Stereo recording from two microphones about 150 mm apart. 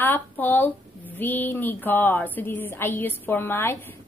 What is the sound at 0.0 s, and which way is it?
Speech, 15° left (ahead or behind).